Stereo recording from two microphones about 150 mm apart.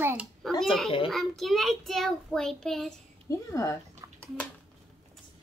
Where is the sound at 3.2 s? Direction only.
20° left (ahead or behind).